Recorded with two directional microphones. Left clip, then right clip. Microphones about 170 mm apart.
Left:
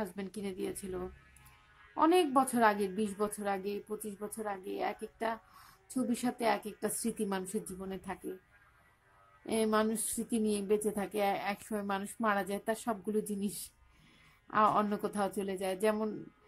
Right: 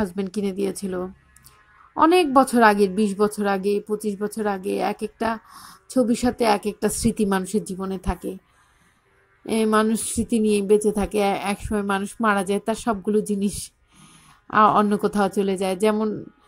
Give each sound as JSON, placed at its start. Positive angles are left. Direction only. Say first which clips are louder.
{"t": 0.0, "sound": "a woman's voice", "louder": "right 14 dB", "side_deg": -30}
{"t": 9.5, "sound": "a woman's voice", "louder": "right 11 dB", "side_deg": -25}
{"t": 14.5, "sound": "a woman's voice", "louder": "right 12 dB", "side_deg": -30}